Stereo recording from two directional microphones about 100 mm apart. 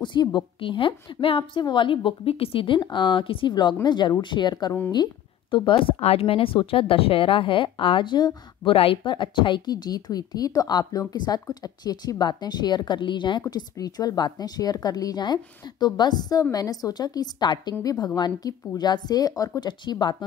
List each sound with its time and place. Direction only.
0.0 s a woman's voice: 50° left (ahead or behind)
5.9 s a woman's voice: 80° left; by 8.4 s 50° left (ahead or behind)
8.6 s speech: 65° left (ahead or behind)
13.5 s a woman's voice: 40° left (ahead or behind)